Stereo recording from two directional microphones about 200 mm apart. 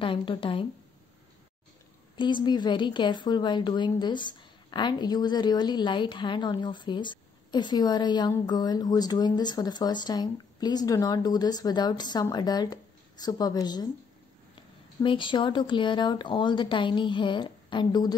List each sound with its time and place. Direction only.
0.0 s a woman's voice: 25° left (ahead or behind)
2.1 s a woman's voice: 25° left (ahead or behind)